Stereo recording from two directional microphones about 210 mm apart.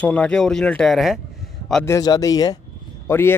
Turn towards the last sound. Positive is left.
turn(degrees=10)  # may be behind; listen again after turning